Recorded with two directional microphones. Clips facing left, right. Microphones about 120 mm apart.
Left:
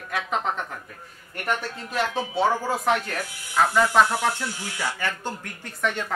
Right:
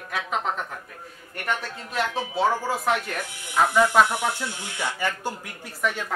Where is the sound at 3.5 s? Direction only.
15° right (ahead or behind).